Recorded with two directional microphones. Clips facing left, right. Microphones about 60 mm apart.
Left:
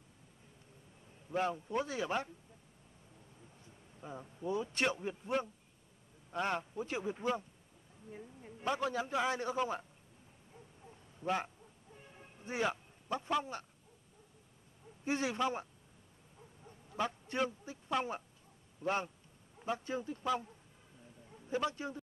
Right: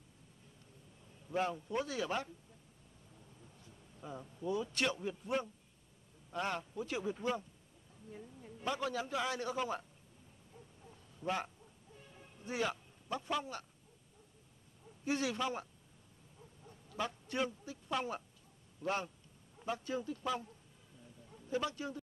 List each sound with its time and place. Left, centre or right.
1.0 s a man's voice: centre
3.4 s a sound: centre
5.0 s a man's voice: left
10.5 s a sound: centre
15.0 s a man's voice: left
16.3 s bow-wow: centre
17.0 s a man's voice: left